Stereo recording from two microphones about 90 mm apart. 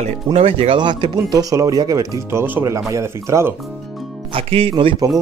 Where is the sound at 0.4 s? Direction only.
90° right; by 3.5 s 30° right (ahead or behind).